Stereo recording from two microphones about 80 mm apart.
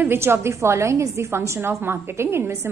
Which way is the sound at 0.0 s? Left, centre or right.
Right.